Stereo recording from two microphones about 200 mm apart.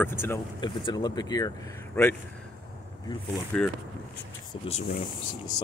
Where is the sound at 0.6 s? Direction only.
20° left (ahead or behind).